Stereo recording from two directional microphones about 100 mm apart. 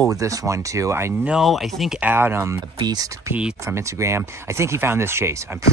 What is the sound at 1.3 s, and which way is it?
Speech, centre (ahead or behind).